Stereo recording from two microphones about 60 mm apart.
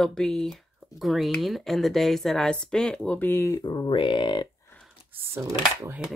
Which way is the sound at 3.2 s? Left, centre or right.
Left.